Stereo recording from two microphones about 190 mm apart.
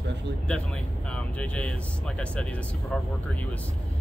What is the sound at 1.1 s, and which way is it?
Speech, 5° left (ahead or behind).